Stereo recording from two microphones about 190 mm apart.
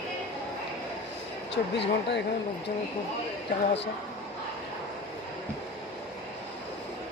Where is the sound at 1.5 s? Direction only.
65° left (ahead or behind).